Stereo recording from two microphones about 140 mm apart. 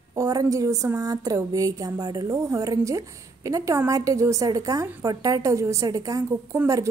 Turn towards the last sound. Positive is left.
turn(degrees=-20)  # may be behind; listen again after turning